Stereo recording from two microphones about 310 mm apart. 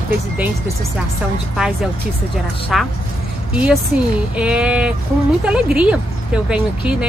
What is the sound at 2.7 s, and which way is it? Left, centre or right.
Speech, centre.